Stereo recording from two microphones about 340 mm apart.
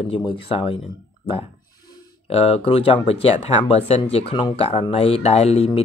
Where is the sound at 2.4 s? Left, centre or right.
Centre.